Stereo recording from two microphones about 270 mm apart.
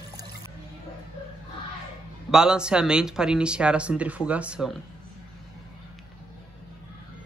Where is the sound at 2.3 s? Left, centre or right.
Centre.